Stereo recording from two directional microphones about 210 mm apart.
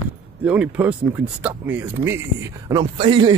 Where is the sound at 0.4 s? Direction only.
5° right (ahead or behind).